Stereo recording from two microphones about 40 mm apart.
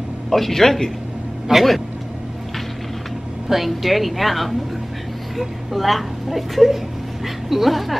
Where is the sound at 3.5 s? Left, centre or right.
Centre.